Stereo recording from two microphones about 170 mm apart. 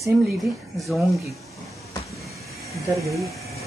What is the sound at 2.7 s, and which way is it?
Speech, 20° right (ahead or behind).